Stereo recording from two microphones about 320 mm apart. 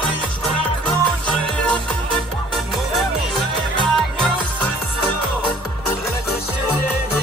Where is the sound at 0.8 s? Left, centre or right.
Centre.